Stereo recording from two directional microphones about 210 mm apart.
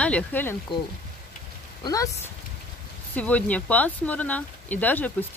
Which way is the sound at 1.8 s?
15° left (ahead or behind).